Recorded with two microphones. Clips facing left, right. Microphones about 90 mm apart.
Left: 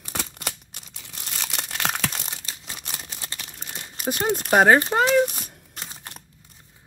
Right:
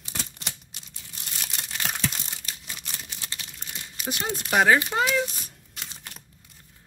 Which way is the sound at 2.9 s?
40° left (ahead or behind).